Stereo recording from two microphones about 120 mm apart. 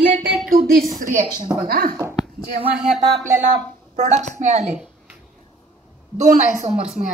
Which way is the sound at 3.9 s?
90° right.